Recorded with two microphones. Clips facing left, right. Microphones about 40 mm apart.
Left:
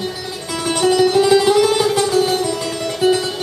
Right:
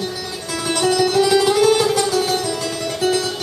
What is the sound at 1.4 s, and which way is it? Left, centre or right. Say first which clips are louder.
Music: left 1 dB; centre.